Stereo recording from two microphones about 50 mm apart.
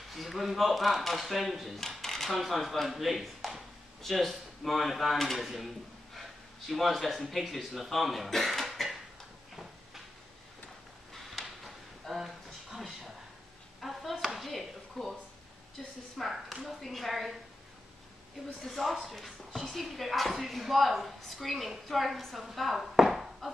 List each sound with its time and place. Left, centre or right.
0.1 s speech: centre
6.1 s a sound: centre
7.2 s speech: centre
11.1 s a sound: centre
15.8 s a woman's voice: centre
18.7 s speech: centre